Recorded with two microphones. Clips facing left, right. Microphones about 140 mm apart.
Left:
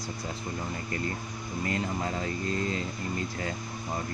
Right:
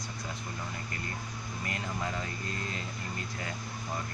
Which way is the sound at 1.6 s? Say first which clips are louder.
Left 5 dB; 25° left (ahead or behind).